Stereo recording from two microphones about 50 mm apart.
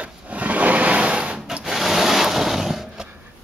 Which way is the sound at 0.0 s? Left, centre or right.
Right.